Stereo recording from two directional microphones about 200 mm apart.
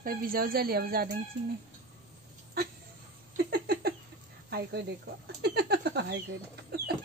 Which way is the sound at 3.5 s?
50° right (ahead or behind).